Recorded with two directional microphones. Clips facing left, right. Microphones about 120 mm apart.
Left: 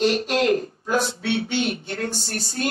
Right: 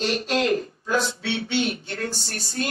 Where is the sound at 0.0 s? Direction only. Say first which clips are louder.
Left 3 dB; 50° left (ahead or behind).